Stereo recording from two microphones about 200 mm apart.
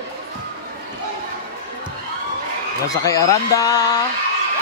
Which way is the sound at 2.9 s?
15° left (ahead or behind).